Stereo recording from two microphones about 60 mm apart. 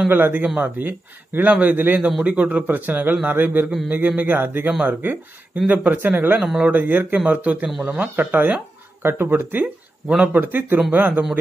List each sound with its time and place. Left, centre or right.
0.1 s a man's voice: right
10.0 s a man's voice: right
10.4 s a man's voice: right